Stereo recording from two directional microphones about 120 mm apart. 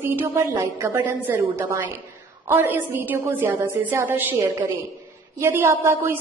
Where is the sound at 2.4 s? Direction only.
15° right (ahead or behind).